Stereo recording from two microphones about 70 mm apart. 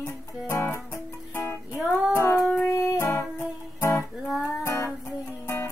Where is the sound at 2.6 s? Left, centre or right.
Left.